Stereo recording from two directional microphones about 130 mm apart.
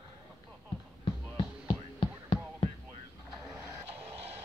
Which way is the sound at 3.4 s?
20° right (ahead or behind).